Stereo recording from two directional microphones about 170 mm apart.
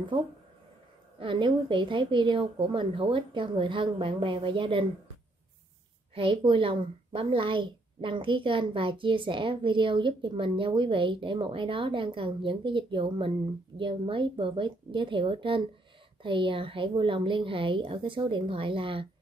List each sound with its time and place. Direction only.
0.1 s a woman's voice: 30° right (ahead or behind)
6.1 s a woman's voice: 30° right (ahead or behind)